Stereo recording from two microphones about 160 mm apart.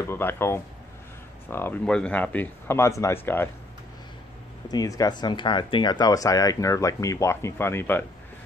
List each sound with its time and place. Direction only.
0.0 s speech: 15° left (ahead or behind)
4.6 s speech: 25° left (ahead or behind)